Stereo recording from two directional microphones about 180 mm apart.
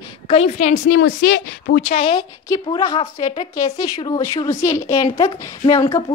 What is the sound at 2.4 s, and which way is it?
Speech, 15° left (ahead or behind).